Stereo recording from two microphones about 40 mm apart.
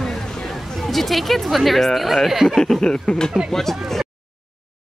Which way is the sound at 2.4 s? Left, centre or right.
Centre.